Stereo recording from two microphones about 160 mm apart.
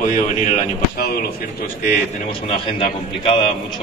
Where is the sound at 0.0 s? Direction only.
50° left (ahead or behind).